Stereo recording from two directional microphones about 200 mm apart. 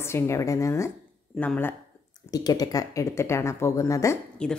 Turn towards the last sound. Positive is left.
turn(degrees=5)  # may be behind; listen again after turning